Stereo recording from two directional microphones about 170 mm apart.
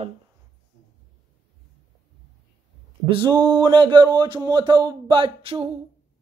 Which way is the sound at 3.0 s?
30° right (ahead or behind).